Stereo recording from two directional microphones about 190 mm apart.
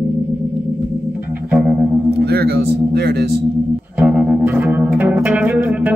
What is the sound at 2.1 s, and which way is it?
Speech, 60° right (ahead or behind).